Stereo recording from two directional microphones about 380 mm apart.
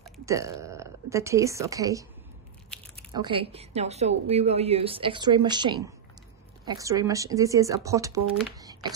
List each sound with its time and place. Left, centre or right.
0.0 s speech: centre